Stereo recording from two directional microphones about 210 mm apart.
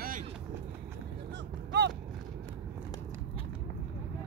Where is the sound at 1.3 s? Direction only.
55° right (ahead or behind).